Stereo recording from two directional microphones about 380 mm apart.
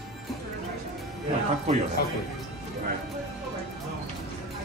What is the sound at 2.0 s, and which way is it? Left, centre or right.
Speech, left.